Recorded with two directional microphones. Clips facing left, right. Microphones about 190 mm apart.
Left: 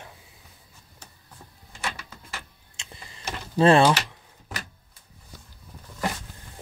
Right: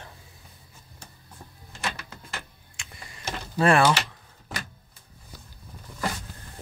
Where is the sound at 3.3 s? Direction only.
25° left (ahead or behind).